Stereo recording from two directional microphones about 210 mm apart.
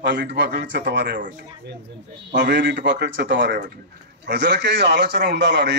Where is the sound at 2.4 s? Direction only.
55° right (ahead or behind).